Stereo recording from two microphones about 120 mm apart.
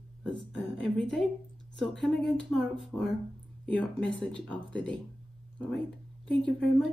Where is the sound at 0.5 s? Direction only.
5° left (ahead or behind).